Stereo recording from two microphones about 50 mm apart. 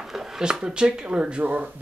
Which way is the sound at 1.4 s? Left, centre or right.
Right.